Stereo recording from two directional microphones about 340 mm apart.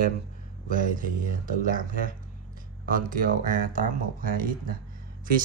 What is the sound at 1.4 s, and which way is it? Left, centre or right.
Speech, right.